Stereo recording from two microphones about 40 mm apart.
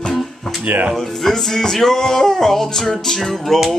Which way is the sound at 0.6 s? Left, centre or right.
Right.